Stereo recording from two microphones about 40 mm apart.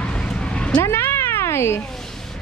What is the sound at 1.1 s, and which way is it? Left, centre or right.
Cat, left.